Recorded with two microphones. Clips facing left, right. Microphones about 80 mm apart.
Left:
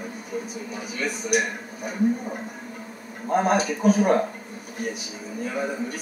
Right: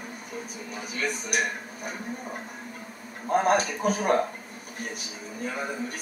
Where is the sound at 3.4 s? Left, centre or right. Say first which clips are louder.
Left 3 dB; centre.